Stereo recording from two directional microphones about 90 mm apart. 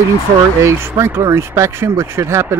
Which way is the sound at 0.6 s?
30° right (ahead or behind).